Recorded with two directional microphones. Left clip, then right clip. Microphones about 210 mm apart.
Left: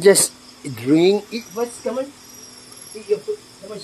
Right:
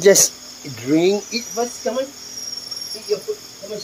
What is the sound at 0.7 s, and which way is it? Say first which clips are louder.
Speech: left 1 dB; 30° left (ahead or behind).